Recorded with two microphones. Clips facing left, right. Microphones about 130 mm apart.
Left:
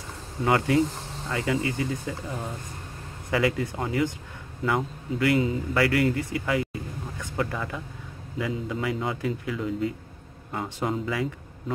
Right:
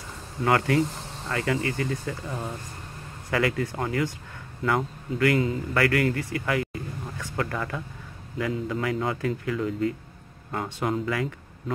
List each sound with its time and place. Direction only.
0.5 s a man's voice: 20° left (ahead or behind)